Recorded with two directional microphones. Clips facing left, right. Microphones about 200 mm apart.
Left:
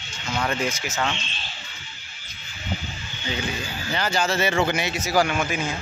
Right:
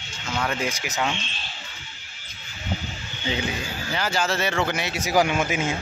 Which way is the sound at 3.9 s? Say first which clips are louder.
Left 1 dB; 5° right (ahead or behind).